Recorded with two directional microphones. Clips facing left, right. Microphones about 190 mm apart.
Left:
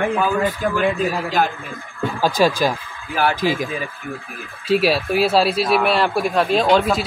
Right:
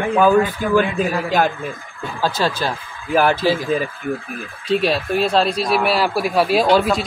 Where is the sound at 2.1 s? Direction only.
15° left (ahead or behind).